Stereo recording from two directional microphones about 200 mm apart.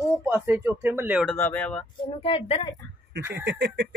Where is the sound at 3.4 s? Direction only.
60° right (ahead or behind).